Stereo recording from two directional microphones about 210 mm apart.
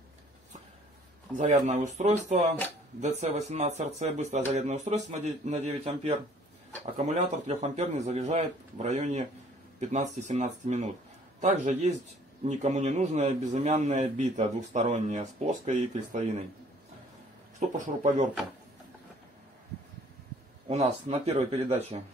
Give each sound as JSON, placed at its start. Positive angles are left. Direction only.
{"t": 1.4, "sound": "a man's voice", "side_deg": -35}
{"t": 17.6, "sound": "a man's voice", "side_deg": -35}
{"t": 20.6, "sound": "a man's voice", "side_deg": -30}